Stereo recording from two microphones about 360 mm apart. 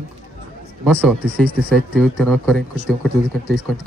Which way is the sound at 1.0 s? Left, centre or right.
Centre.